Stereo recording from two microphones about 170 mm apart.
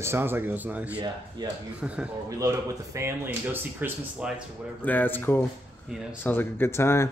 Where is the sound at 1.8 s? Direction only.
5° right (ahead or behind).